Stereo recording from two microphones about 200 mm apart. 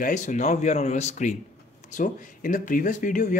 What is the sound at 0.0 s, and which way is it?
Speech, 40° left (ahead or behind).